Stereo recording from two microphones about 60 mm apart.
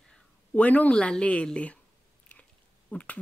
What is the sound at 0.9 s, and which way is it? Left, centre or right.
Speech, centre.